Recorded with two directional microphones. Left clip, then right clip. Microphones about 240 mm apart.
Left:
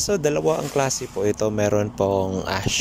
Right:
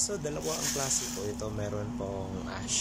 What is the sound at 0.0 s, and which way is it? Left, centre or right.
Speech, left.